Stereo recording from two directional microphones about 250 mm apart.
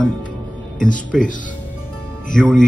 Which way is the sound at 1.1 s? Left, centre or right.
Centre.